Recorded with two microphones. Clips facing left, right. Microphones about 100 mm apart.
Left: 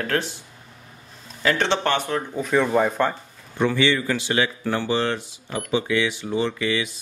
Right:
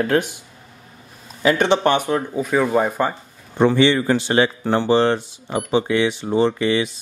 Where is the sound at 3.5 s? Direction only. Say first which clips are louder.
Right 5 dB; 30° right (ahead or behind).